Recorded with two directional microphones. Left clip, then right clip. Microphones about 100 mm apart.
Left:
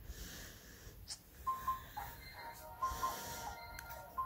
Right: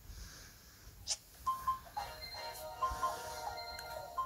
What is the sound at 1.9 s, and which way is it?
Music, 45° right (ahead or behind).